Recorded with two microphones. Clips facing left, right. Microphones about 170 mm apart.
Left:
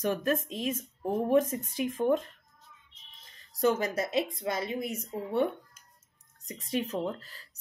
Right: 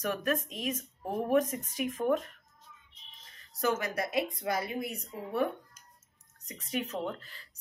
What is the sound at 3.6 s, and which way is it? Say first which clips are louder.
Speech: left 4 dB; 30° left (ahead or behind).